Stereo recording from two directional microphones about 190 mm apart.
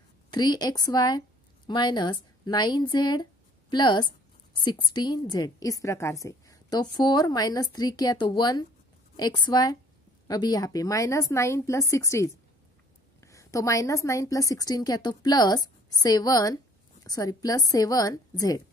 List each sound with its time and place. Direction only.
0.3 s a woman's voice: 20° left (ahead or behind)